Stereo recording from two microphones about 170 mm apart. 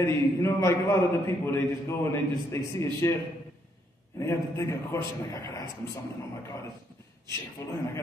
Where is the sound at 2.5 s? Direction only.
15° left (ahead or behind).